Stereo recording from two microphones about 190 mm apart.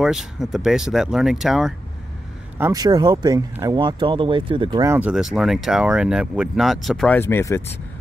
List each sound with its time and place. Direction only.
0.0 s speech: centre (ahead or behind)
2.6 s speech: 20° right (ahead or behind)
4.7 s speech: 15° right (ahead or behind); by 7.6 s 15° left (ahead or behind)